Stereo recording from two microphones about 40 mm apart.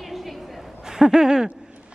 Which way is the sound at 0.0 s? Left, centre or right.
Centre.